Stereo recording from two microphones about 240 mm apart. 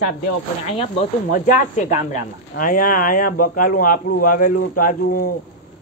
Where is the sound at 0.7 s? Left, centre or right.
Left.